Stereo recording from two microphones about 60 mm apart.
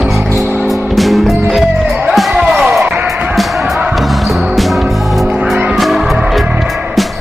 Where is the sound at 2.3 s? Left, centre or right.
Centre.